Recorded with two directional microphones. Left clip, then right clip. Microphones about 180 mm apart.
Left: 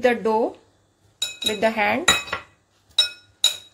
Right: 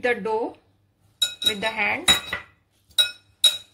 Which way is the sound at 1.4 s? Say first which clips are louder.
Left 5 dB; 50° left (ahead or behind).